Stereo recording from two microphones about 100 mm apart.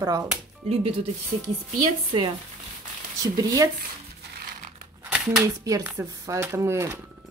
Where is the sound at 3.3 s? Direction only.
35° right (ahead or behind).